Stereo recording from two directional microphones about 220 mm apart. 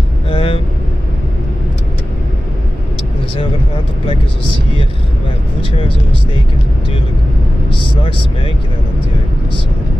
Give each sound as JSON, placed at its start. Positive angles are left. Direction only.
{"t": 0.3, "sound": "vehicle", "side_deg": 25}
{"t": 5.6, "sound": "speech", "side_deg": 25}